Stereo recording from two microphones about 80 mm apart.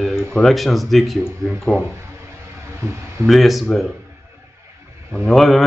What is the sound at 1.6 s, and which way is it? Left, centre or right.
Speech, centre.